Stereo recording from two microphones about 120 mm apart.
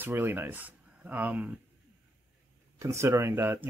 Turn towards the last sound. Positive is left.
turn(degrees=-20)  # may be behind; listen again after turning